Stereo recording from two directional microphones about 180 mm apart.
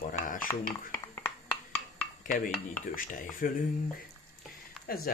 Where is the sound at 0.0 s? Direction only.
50° left (ahead or behind).